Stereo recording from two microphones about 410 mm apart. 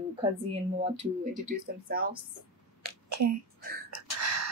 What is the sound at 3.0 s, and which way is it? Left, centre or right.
Speech, right.